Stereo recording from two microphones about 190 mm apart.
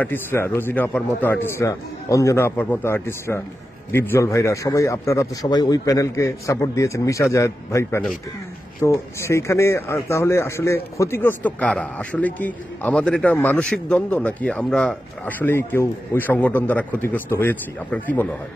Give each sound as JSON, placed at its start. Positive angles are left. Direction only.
{"t": 0.0, "sound": "speech", "side_deg": 10}